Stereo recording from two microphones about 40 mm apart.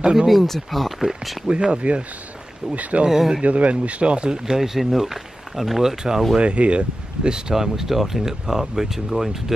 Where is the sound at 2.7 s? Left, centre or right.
Right.